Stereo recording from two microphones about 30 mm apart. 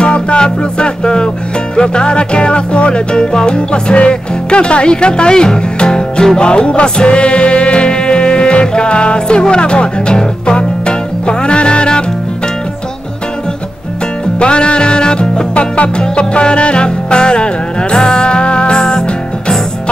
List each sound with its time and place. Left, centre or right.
0.0 s music: left
14.4 s music: left
15.5 s music: left